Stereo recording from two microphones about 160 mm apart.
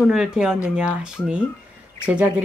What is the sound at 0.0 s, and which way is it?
Speech, 5° right (ahead or behind).